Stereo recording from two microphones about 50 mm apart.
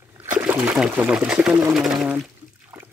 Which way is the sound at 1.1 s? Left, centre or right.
Right.